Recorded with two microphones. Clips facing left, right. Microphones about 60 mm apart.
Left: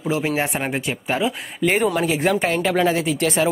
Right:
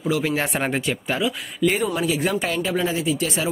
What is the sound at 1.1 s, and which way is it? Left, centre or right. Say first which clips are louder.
Speech: left 2 dB; left.